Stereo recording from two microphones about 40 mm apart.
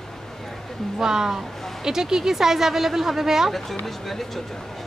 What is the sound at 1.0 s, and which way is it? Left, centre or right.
Speech, centre.